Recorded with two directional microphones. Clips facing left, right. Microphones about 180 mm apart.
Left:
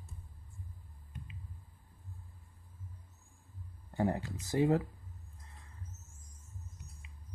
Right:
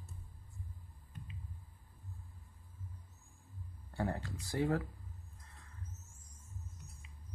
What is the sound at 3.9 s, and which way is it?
Speech, 20° left (ahead or behind).